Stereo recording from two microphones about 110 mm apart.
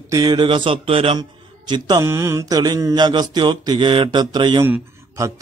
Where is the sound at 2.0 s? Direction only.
25° right (ahead or behind); by 4.6 s 40° right (ahead or behind).